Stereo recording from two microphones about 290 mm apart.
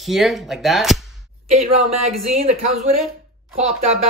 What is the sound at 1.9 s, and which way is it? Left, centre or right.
Speech, right.